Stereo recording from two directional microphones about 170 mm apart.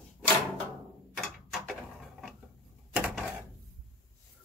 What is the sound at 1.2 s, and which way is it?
Mechanisms, centre (ahead or behind).